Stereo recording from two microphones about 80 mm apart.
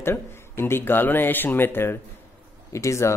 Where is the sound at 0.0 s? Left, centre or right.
Left.